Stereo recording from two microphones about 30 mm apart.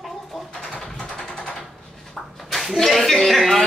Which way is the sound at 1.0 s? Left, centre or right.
Left.